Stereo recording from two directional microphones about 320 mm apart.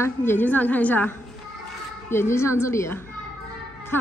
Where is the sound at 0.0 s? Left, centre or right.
Centre.